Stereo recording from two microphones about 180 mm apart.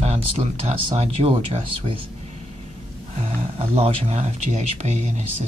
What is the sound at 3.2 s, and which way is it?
Speech, 35° right (ahead or behind).